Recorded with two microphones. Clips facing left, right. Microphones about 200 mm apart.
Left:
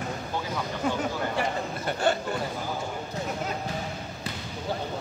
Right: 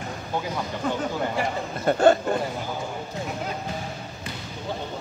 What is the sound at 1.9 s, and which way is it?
Speech, 45° right (ahead or behind).